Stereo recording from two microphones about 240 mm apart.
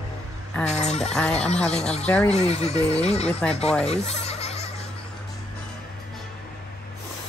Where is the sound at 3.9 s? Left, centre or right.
Left.